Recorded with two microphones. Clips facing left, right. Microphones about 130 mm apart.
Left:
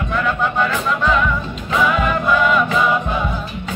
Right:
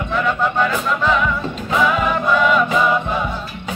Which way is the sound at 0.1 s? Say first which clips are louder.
Right 1 dB; centre (ahead or behind).